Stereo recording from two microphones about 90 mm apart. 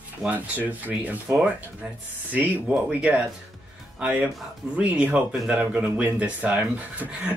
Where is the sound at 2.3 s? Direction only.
15° right (ahead or behind).